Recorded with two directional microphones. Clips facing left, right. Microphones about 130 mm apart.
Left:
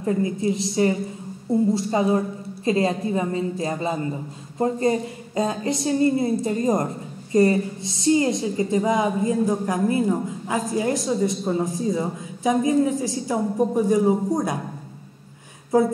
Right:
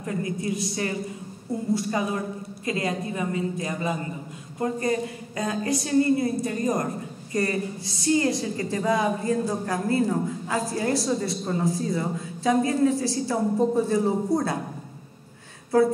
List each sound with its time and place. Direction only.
0.0 s a woman's voice: 25° left (ahead or behind)
15.7 s a woman's voice: 15° left (ahead or behind)